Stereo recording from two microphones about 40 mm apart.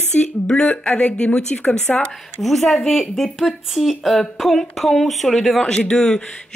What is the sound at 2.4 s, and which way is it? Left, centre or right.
Speech, centre.